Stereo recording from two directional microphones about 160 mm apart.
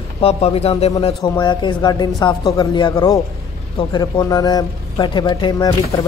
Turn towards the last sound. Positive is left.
turn(degrees=25)  # may be behind; listen again after turning